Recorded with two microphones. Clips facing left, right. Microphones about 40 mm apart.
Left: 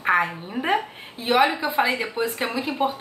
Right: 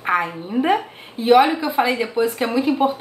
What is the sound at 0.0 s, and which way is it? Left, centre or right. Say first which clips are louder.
A woman's voice: even; centre.